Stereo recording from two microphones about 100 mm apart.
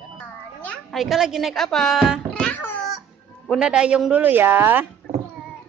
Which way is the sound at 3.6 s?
10° right (ahead or behind).